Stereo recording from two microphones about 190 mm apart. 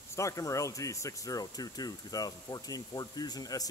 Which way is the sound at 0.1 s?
15° left (ahead or behind).